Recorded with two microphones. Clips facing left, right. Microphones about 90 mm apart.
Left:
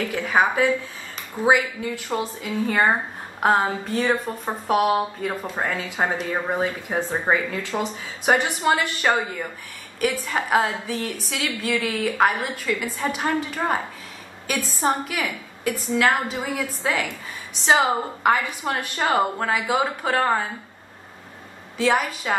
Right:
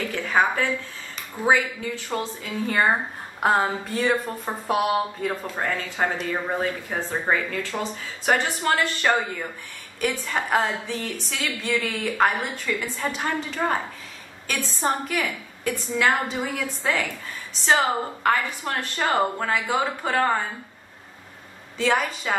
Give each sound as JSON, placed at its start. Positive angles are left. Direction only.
{"t": 0.1, "sound": "a woman's voice", "side_deg": 10}
{"t": 2.0, "sound": "a woman's voice", "side_deg": 5}
{"t": 9.9, "sound": "a woman's voice", "side_deg": 0}
{"t": 21.7, "sound": "a woman's voice", "side_deg": 5}